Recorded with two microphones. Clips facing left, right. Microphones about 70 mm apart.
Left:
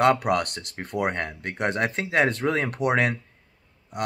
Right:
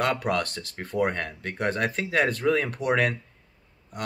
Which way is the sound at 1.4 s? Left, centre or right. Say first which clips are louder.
Left 1 dB; left.